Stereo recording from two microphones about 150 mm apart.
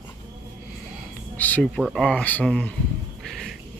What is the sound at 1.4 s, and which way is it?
Speech, 10° left (ahead or behind).